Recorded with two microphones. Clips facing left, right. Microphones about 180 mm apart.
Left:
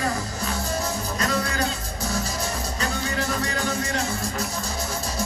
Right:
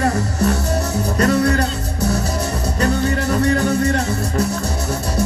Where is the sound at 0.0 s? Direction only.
70° right (ahead or behind).